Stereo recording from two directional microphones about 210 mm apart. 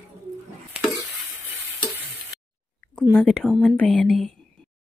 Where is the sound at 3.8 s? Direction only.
5° left (ahead or behind).